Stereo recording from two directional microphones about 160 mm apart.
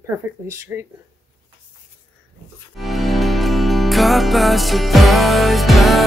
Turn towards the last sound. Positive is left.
turn(degrees=0)  # may be behind; listen again after turning